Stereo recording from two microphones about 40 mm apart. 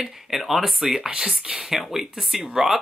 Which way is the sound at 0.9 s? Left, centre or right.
Centre.